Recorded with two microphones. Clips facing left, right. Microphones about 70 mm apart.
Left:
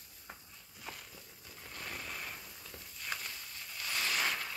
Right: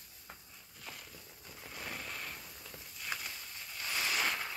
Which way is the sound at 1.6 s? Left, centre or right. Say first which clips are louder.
Right 1 dB; centre.